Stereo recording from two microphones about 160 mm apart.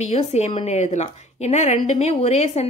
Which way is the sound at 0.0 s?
45° left (ahead or behind).